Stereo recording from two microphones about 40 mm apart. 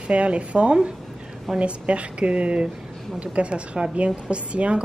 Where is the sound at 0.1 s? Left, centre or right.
Right.